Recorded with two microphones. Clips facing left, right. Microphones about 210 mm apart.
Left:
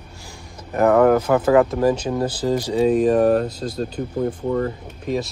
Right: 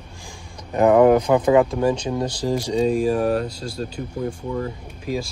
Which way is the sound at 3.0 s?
55° left (ahead or behind).